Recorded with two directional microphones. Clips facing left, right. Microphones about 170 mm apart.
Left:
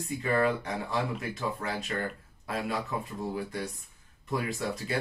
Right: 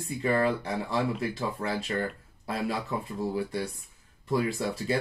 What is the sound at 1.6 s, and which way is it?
Speech, 30° right (ahead or behind).